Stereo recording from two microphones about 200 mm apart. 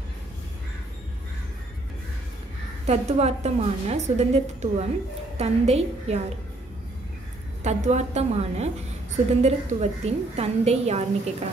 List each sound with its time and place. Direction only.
2.9 s a woman's voice: 30° right (ahead or behind)
7.6 s a woman's voice: 35° right (ahead or behind)